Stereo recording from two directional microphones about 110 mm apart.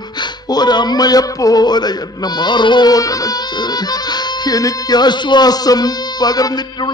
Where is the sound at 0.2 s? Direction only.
40° left (ahead or behind).